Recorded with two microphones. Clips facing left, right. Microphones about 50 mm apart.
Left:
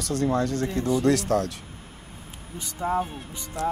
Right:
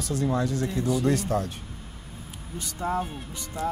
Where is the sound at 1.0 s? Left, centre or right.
Left.